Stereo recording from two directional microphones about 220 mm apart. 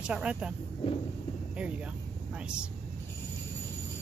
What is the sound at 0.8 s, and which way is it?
Vehicle, 25° left (ahead or behind).